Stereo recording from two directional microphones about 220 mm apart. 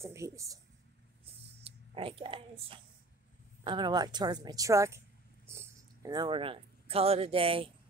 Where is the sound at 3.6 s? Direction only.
20° right (ahead or behind).